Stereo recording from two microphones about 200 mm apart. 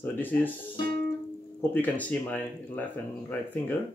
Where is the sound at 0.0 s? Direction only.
10° left (ahead or behind).